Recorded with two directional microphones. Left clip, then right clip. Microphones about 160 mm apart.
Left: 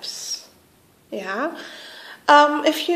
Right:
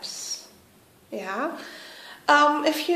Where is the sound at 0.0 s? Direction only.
35° left (ahead or behind).